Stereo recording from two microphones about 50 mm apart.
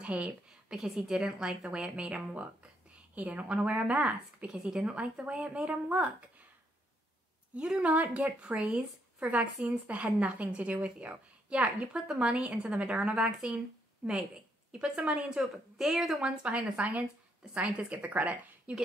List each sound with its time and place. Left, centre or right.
0.0 s a woman's voice: right
0.5 s a sound: centre
0.8 s a woman's voice: centre; by 6.1 s right
7.5 s a woman's voice: right
7.9 s a woman's voice: right
15.8 s a woman's voice: centre
16.2 s a woman's voice: right